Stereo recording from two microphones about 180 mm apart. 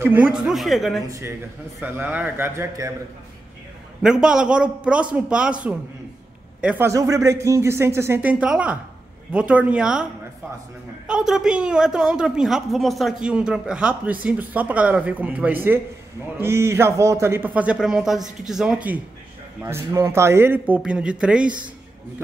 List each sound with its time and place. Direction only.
0.0 s a woman's voice: 10° right (ahead or behind)
1.0 s a man's voice: 20° right (ahead or behind)
4.0 s a woman's voice: 5° right (ahead or behind)
11.1 s a woman's voice: 5° right (ahead or behind)